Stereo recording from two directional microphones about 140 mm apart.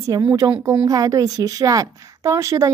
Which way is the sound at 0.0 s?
25° right (ahead or behind).